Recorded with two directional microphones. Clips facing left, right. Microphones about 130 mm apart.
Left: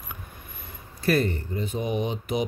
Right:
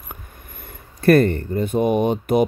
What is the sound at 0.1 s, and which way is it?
Speech, 55° right (ahead or behind).